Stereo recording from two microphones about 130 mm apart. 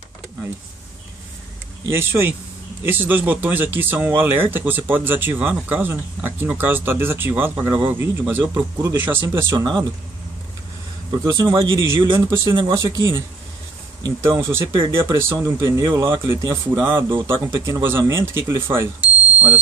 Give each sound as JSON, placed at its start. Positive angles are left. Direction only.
{"t": 1.9, "sound": "speech", "side_deg": -20}
{"t": 11.3, "sound": "speech", "side_deg": -30}
{"t": 12.0, "sound": "speech", "side_deg": -35}
{"t": 12.7, "sound": "speech", "side_deg": -25}
{"t": 18.9, "sound": "smoke detector", "side_deg": -15}